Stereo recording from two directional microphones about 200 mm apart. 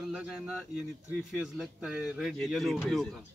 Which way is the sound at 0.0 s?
5° right (ahead or behind).